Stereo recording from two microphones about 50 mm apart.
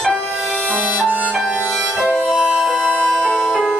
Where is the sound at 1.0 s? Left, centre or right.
Right.